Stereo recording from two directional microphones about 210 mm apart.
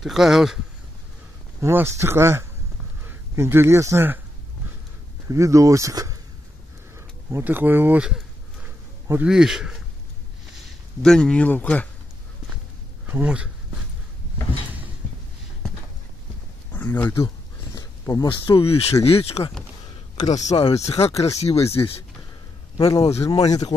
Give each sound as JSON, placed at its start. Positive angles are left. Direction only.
{"t": 0.0, "sound": "speech", "side_deg": 0}
{"t": 1.6, "sound": "speech", "side_deg": -10}
{"t": 5.3, "sound": "speech", "side_deg": -15}
{"t": 7.2, "sound": "speech", "side_deg": -10}
{"t": 11.0, "sound": "speech", "side_deg": 5}
{"t": 13.0, "sound": "speech", "side_deg": -5}
{"t": 16.7, "sound": "speech", "side_deg": 10}
{"t": 21.0, "sound": "speech", "side_deg": 15}
{"t": 21.4, "sound": "speech", "side_deg": 30}
{"t": 22.8, "sound": "speech", "side_deg": 15}